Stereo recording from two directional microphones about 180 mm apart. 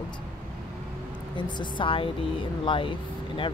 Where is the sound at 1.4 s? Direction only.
25° left (ahead or behind).